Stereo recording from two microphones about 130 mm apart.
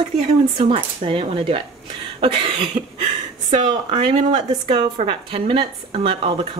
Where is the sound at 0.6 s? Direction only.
45° right (ahead or behind).